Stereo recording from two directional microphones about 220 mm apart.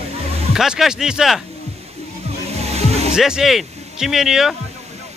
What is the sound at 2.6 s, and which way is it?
Music, 30° right (ahead or behind).